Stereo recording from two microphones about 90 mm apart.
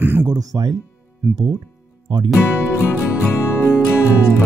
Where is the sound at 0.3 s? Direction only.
45° right (ahead or behind).